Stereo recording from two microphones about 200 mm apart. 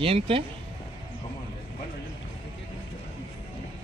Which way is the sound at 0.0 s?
30° right (ahead or behind).